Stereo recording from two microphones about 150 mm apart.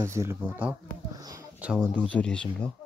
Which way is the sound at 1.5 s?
5° right (ahead or behind).